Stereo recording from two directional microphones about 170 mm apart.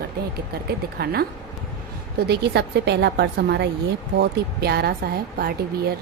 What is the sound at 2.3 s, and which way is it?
A woman's voice, 75° right (ahead or behind).